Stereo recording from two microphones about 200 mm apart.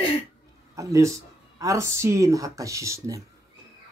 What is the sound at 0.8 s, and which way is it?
Speech, 15° right (ahead or behind).